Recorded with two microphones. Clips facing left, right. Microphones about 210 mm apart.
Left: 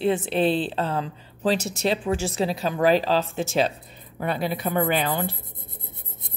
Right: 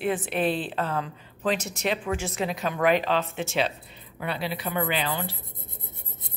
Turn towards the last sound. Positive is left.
turn(degrees=50)  # may be behind; listen again after turning